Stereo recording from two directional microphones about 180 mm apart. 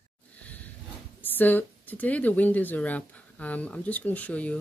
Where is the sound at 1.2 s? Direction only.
10° left (ahead or behind).